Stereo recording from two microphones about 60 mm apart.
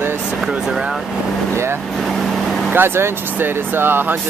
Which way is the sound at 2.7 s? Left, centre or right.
Right.